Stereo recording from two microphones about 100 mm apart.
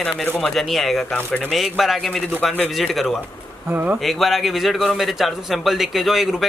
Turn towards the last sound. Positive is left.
turn(degrees=0)  # may be behind; listen again after turning